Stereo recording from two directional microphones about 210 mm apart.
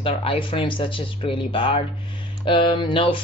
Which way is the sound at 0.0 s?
25° left (ahead or behind).